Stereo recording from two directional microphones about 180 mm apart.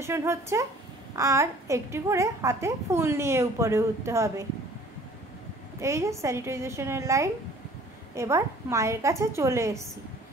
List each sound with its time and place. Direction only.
0.0 s a child's voice: 15° right (ahead or behind)
5.8 s a child's voice: 15° right (ahead or behind)